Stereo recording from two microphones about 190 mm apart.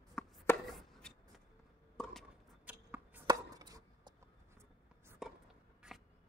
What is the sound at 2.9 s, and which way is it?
Chopping, 10° right (ahead or behind).